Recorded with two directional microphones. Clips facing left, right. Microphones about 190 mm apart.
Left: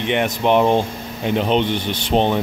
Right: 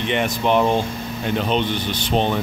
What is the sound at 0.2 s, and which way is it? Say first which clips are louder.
Speech: left 2 dB; 20° left (ahead or behind).